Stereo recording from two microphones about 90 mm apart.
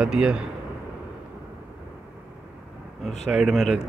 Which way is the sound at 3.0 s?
5° right (ahead or behind).